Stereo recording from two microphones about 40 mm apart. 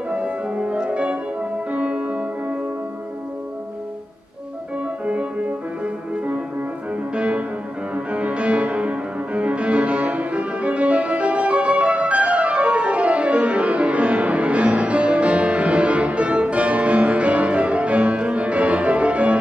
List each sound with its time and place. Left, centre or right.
0.1 s music: right
5.0 s music: right
7.2 s music: right